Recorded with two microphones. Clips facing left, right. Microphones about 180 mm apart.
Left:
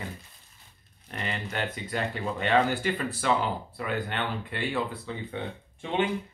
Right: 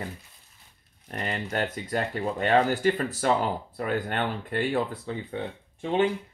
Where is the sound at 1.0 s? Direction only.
45° right (ahead or behind).